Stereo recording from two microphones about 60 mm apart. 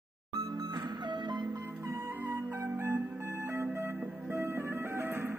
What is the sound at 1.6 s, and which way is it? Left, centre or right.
Music, right.